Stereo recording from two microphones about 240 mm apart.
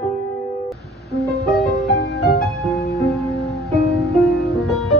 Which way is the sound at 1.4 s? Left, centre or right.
Centre.